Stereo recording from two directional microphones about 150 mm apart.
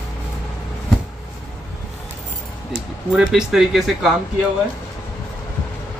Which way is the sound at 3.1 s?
5° right (ahead or behind).